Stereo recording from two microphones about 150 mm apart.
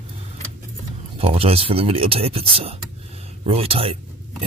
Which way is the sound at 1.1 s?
40° right (ahead or behind).